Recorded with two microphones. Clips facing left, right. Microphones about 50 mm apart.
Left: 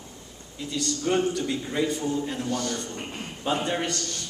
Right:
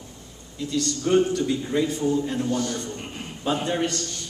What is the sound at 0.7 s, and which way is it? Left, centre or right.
A man's voice, centre.